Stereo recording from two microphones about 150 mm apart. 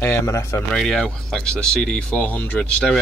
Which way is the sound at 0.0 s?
20° left (ahead or behind).